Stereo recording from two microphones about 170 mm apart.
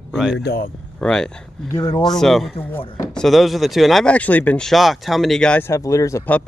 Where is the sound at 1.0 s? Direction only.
5° left (ahead or behind).